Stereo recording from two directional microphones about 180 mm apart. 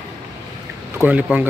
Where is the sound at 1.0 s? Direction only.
10° right (ahead or behind).